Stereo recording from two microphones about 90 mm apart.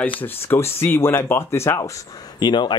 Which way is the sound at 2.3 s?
55° left (ahead or behind).